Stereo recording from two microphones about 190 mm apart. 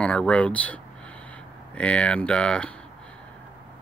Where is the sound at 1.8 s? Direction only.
5° left (ahead or behind).